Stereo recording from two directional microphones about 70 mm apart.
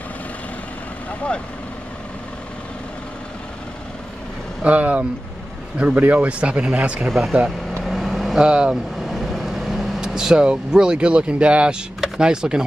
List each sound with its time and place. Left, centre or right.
4.6 s speech: right
7.1 s speech: centre
7.8 s vehicle: centre
12.0 s speech: centre